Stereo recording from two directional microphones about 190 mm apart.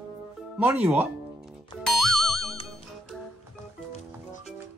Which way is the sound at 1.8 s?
Centre (ahead or behind).